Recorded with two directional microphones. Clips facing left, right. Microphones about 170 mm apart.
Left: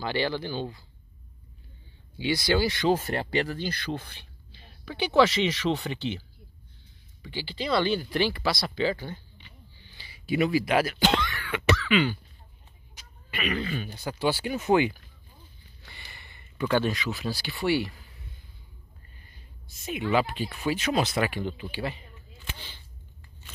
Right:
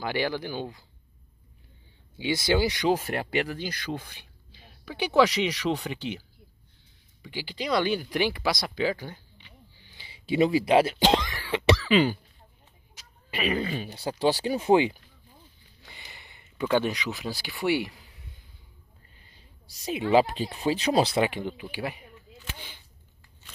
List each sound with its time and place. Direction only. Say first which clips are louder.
0.0 s speech: even; 10° right (ahead or behind)
2.1 s speech: even; 20° right (ahead or behind); by 12.2 s 35° right (ahead or behind)
13.0 s a sound: left 1 dB; centre (ahead or behind)
13.3 s speech: right 2 dB; 30° right (ahead or behind)
19.7 s speech: right 4 dB; 35° right (ahead or behind)
21.2 s speech: right 2 dB; 20° right (ahead or behind)